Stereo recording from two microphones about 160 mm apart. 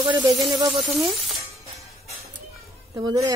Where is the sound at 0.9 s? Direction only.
Centre (ahead or behind).